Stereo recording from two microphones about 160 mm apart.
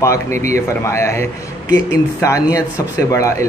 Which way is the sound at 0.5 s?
15° left (ahead or behind).